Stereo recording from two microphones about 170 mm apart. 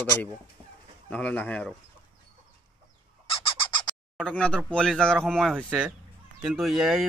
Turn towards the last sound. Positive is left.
turn(degrees=0)  # may be behind; listen again after turning